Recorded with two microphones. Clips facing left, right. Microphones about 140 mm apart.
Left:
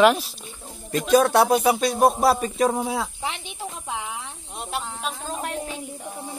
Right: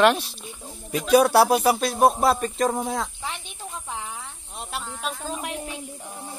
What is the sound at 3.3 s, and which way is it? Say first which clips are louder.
Snake: left 2 dB; 90° left.